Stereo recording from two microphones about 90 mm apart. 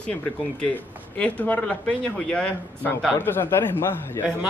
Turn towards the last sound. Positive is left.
turn(degrees=25)  # may be behind; listen again after turning